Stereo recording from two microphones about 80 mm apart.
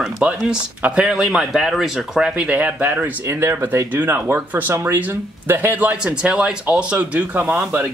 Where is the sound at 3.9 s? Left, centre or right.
Right.